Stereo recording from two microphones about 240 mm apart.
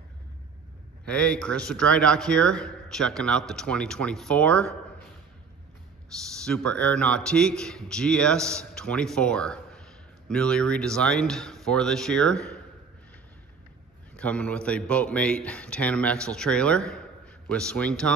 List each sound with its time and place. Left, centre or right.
1.0 s a man's voice: centre
6.1 s a man's voice: centre
14.1 s a man's voice: centre